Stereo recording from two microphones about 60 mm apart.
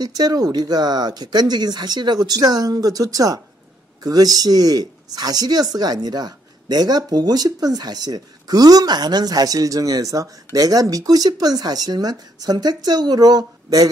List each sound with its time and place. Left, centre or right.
0.0 s speech: right